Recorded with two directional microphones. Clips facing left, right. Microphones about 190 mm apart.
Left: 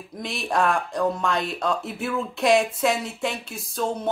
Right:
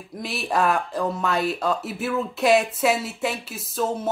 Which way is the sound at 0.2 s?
5° right (ahead or behind).